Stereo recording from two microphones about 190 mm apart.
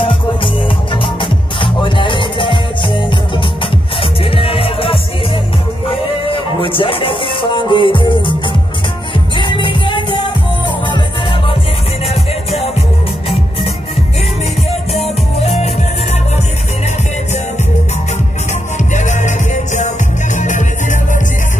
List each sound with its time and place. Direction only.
1.0 s music: 25° left (ahead or behind)
9.4 s music: 25° left (ahead or behind)
12.1 s music: 30° left (ahead or behind)
18.9 s music: 40° left (ahead or behind)